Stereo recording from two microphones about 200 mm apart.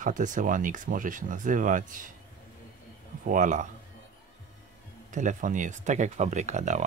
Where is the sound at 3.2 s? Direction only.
40° right (ahead or behind).